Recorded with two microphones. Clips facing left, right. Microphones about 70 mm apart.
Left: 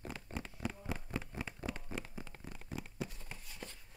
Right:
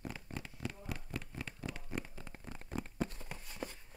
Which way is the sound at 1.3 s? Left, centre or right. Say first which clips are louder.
Left 2 dB; centre.